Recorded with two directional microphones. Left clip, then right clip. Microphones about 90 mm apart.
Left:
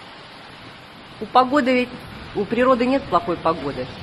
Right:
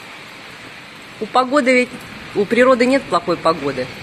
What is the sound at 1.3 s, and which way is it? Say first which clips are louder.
Speech: right 2 dB; 5° right (ahead or behind).